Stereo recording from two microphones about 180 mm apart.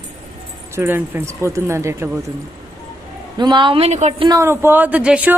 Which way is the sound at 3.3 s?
25° right (ahead or behind).